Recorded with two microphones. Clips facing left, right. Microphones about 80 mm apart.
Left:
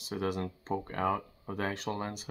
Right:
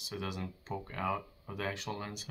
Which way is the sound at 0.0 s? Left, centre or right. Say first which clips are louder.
Left 6 dB; left.